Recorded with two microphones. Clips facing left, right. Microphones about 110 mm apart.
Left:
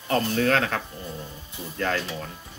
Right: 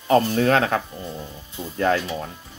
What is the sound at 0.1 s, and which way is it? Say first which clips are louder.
Speech: right 5 dB; 20° right (ahead or behind).